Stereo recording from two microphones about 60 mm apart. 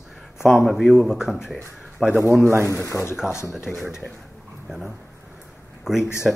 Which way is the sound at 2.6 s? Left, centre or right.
Left.